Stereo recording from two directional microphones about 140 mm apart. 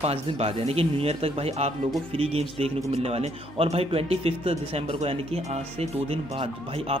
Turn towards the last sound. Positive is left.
turn(degrees=-45)  # may be behind; listen again after turning